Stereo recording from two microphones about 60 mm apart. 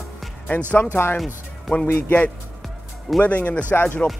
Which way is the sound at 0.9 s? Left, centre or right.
Left.